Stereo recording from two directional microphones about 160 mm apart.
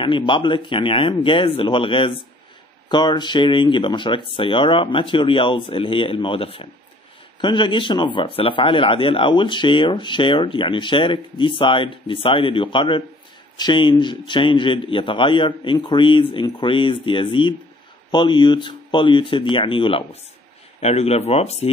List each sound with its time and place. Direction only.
0.0 s a man's voice: 30° left (ahead or behind)